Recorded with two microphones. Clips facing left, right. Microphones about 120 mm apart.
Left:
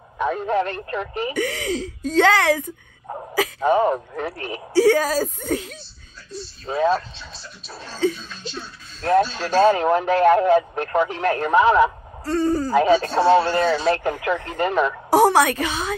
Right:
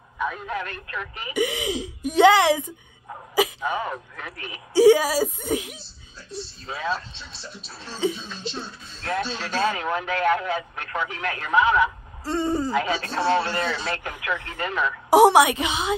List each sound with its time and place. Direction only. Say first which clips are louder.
0.2 s a man's voice: left 7 dB; 35° left (ahead or behind)
1.3 s speech: right 3 dB; 15° right (ahead or behind)
3.6 s a man's voice: left 10 dB; 40° left (ahead or behind)
4.7 s speech: right 1 dB; 15° right (ahead or behind)
6.6 s a man's voice: left 9 dB; 35° left (ahead or behind)
8.0 s speech: left 3 dB; 15° right (ahead or behind)
8.4 s speech: right 1 dB; 30° right (ahead or behind)
9.0 s a man's voice: left 9 dB; 35° left (ahead or behind)
12.3 s speech: left 3 dB; 20° right (ahead or behind)
12.7 s a man's voice: left 8 dB; 35° left (ahead or behind)
15.0 s speech: right 2 dB; 15° right (ahead or behind)